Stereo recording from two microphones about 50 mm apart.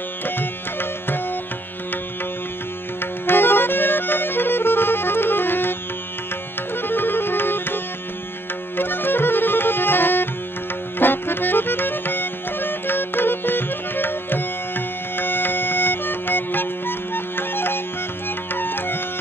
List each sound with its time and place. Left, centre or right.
0.2 s music: left
3.0 s music: left